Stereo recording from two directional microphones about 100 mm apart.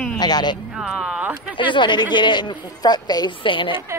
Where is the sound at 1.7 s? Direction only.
50° left (ahead or behind).